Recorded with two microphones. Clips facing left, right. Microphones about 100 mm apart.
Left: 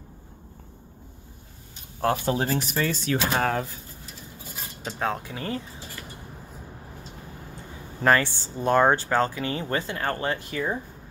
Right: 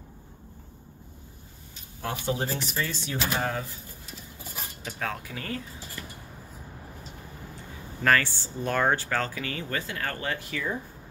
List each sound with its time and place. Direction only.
2.2 s speech: 90° left; by 3.6 s 70° left (ahead or behind)
4.8 s speech: 30° left (ahead or behind)
8.0 s speech: 25° left (ahead or behind)